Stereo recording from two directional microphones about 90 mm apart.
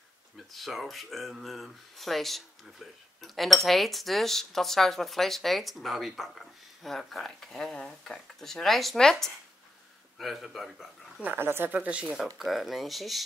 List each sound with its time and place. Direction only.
0.5 s speech: centre (ahead or behind)
11.1 s speech: 20° right (ahead or behind); by 13.2 s centre (ahead or behind)